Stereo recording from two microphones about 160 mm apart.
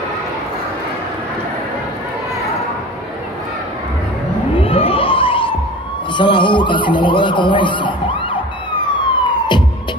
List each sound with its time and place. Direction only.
4.6 s a sound: 35° left (ahead or behind)
6.1 s speech: 30° left (ahead or behind)
8.8 s police car: 30° left (ahead or behind)